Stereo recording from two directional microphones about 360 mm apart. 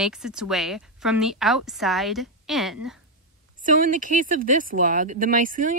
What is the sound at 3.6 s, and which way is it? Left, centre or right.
Speech, right.